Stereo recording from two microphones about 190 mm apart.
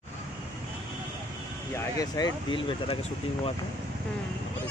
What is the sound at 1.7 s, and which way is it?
Speech, 20° left (ahead or behind).